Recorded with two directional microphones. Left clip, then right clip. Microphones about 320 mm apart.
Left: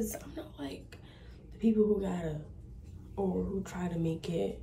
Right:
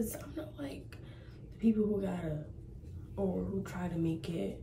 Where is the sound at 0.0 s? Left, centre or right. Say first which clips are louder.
Left 1 dB; centre.